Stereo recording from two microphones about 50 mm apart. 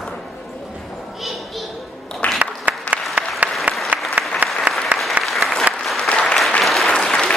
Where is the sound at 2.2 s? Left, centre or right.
Left.